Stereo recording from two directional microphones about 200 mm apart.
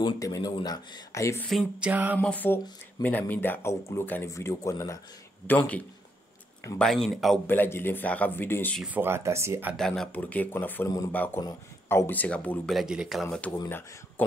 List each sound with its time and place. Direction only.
0.0 s speech: 20° left (ahead or behind)
1.5 s speech: centre (ahead or behind)
2.1 s speech: 10° left (ahead or behind)
6.8 s speech: centre (ahead or behind)
8.8 s speech: 10° right (ahead or behind)
9.8 s speech: centre (ahead or behind)
13.5 s speech: 10° left (ahead or behind)